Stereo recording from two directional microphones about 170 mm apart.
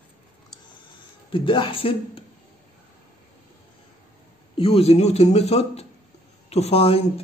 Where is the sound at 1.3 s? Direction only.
30° left (ahead or behind).